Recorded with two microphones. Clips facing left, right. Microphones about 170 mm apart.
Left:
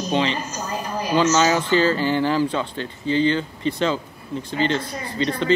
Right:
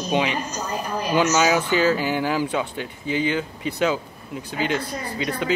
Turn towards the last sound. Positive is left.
turn(degrees=-10)  # may be behind; listen again after turning